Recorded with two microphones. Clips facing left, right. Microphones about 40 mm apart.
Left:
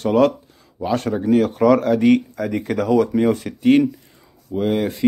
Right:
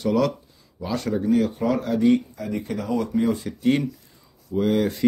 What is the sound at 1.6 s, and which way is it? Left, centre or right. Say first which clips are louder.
Speech: left 9 dB; left.